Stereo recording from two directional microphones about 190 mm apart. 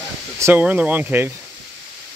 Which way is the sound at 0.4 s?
10° right (ahead or behind).